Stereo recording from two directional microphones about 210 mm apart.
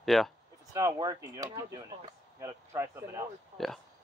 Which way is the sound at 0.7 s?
15° right (ahead or behind).